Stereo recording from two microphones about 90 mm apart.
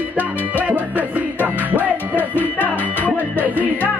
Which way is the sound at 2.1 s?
20° left (ahead or behind).